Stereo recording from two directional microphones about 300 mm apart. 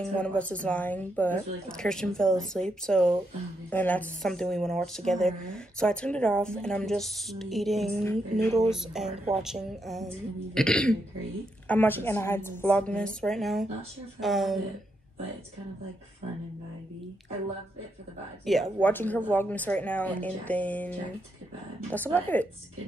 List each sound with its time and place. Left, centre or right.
0.0 s speech: centre
18.4 s speech: centre
21.9 s speech: centre